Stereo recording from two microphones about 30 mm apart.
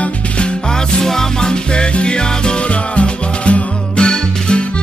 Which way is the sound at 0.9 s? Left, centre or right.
Centre.